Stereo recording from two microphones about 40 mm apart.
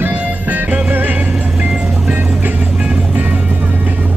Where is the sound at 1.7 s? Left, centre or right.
Right.